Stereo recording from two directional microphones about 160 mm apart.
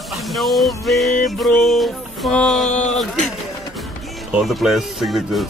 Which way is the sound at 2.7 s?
45° left (ahead or behind).